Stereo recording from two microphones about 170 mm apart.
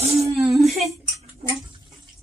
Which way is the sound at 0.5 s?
Centre (ahead or behind).